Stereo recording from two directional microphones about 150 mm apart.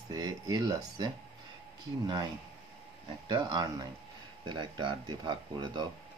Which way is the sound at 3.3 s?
25° right (ahead or behind).